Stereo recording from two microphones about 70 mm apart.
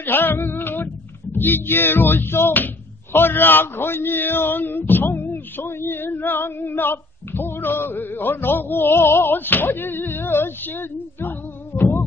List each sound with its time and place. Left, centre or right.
0.0 s female singing: left
1.3 s speech: left
11.7 s music: left